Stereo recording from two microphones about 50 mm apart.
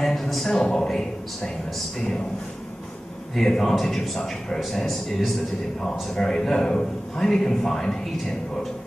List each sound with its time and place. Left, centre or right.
0.0 s a sound: centre
0.5 s a man's voice: centre
3.3 s a man's voice: centre